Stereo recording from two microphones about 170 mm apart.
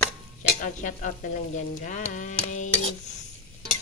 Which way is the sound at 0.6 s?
50° left (ahead or behind).